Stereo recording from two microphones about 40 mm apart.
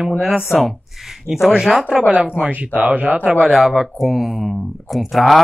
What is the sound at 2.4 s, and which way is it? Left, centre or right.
Speech, right.